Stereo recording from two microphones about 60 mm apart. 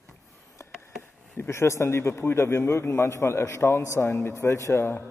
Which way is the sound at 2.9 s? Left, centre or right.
Left.